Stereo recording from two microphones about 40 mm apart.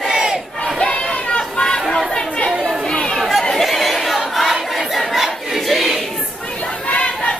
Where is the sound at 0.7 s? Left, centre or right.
Left.